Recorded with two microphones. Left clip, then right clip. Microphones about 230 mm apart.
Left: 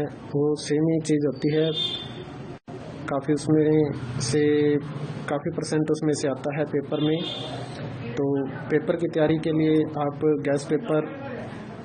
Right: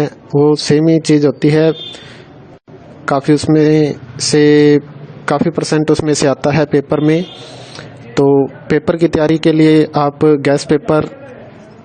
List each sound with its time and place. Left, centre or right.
0.0 s speech: right
3.1 s speech: right
8.6 s speech: right